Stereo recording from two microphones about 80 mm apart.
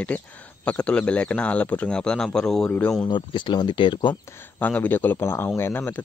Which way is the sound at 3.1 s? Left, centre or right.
Left.